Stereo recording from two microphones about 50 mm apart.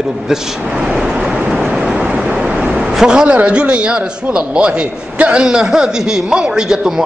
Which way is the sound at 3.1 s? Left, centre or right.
Centre.